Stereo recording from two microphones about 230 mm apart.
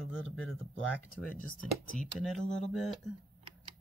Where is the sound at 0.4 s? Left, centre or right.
Centre.